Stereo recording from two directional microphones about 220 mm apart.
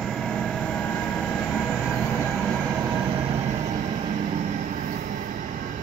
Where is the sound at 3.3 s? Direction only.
30° right (ahead or behind).